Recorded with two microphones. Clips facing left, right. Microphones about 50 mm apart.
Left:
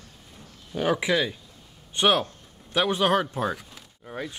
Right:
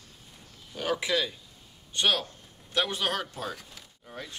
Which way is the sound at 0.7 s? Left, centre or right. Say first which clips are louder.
Left 5 dB; left.